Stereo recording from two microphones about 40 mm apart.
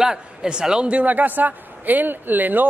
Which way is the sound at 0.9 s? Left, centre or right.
Right.